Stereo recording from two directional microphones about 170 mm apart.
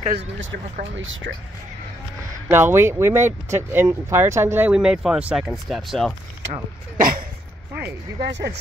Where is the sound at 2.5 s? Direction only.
15° right (ahead or behind).